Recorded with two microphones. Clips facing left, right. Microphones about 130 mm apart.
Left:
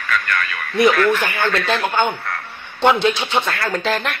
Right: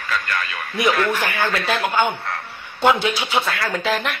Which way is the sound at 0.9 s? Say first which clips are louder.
Left 4 dB; 20° right (ahead or behind).